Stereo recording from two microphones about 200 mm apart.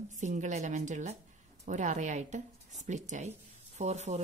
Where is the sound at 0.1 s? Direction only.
40° right (ahead or behind).